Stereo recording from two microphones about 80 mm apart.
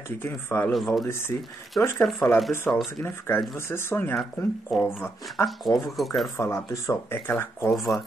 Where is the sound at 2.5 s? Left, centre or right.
Left.